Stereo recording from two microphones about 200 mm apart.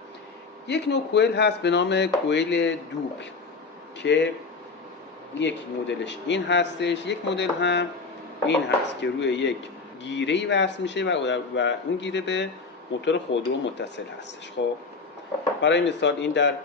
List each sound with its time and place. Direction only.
0.7 s speech: 60° left (ahead or behind)
4.0 s speech: 60° left (ahead or behind)
5.4 s speech: 60° left (ahead or behind)